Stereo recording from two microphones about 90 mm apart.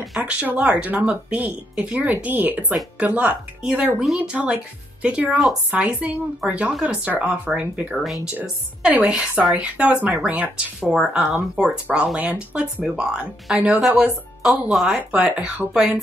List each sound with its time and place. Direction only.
0.2 s a woman's voice: 15° right (ahead or behind)
5.7 s speech: 15° right (ahead or behind)
7.9 s speech: centre (ahead or behind)
8.4 s a woman's voice: 20° right (ahead or behind)
15.0 s speech: 15° right (ahead or behind)